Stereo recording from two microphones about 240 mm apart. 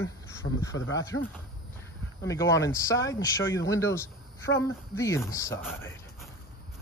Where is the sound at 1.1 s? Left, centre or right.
Left.